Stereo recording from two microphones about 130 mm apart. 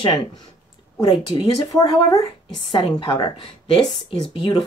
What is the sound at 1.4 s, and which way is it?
Speech, 35° left (ahead or behind).